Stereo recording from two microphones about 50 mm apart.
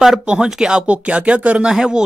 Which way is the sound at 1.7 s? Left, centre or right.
Centre.